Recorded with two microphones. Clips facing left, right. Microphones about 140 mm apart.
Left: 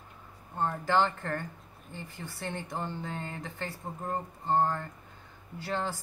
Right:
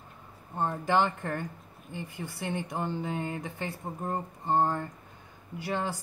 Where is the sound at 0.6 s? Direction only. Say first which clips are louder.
Right 1 dB; 15° right (ahead or behind).